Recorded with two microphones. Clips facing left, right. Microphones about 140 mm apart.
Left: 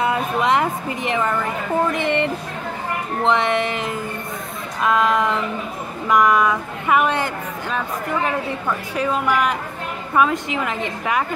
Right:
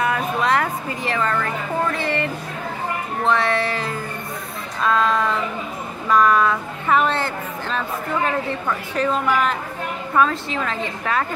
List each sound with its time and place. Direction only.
0.0 s a woman's voice: 20° left (ahead or behind)